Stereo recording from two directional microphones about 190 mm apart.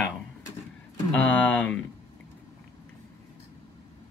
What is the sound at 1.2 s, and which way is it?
Speech, 10° left (ahead or behind).